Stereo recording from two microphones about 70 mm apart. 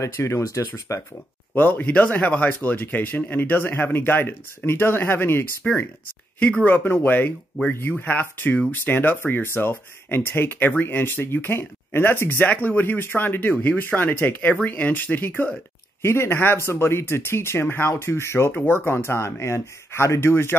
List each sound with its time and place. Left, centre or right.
0.0 s speech: left
1.5 s speech: left